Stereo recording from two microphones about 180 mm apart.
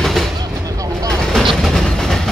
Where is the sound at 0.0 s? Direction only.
Centre (ahead or behind).